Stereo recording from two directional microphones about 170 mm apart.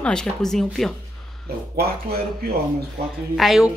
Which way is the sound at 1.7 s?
65° right (ahead or behind).